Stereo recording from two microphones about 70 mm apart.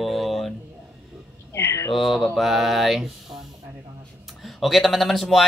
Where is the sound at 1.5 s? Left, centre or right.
Left.